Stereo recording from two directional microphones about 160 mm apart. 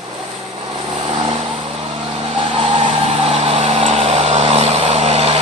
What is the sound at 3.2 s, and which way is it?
Vehicle, 40° right (ahead or behind).